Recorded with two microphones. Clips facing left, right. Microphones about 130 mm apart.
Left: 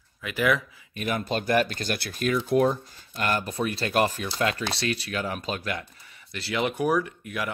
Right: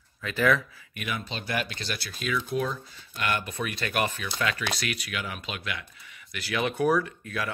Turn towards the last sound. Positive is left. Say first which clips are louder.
# left 1 dB
turn(degrees=20)  # may be behind; listen again after turning